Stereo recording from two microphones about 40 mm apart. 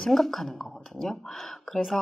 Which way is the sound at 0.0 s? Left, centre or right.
Centre.